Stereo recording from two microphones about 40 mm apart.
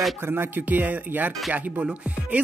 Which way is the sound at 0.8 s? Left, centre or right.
Right.